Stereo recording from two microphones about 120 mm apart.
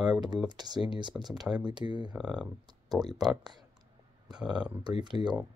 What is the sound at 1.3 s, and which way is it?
Speech, 5° right (ahead or behind).